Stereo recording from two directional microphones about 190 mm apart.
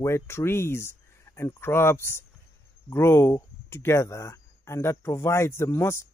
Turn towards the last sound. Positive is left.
turn(degrees=15)  # may be behind; listen again after turning